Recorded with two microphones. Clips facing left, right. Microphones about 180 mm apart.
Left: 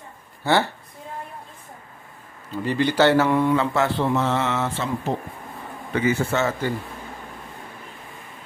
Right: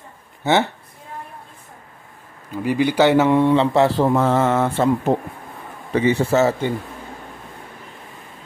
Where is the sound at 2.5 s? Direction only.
10° right (ahead or behind); by 4.0 s 30° right (ahead or behind).